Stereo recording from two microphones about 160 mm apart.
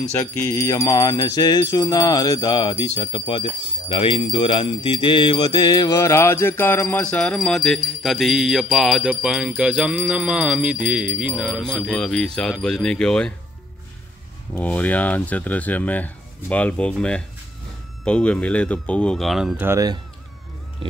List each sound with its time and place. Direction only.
0.1 s music: 15° left (ahead or behind)
3.9 s jingle bell: 30° left (ahead or behind); by 13.3 s 5° left (ahead or behind)
14.5 s speech: 10° left (ahead or behind)
19.6 s speech: 20° right (ahead or behind)